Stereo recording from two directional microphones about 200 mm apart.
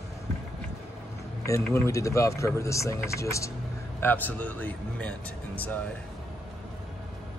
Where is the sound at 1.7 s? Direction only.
15° left (ahead or behind).